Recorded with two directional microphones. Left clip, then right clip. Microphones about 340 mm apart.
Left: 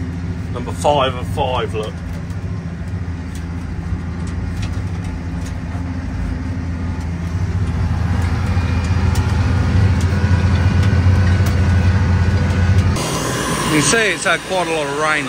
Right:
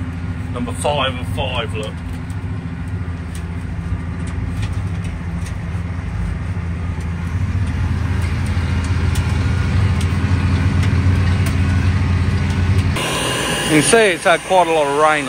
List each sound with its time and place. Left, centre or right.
0.8 s speech: left
13.5 s speech: centre